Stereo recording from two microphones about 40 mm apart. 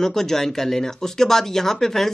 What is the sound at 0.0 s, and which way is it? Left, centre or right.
Speech, centre.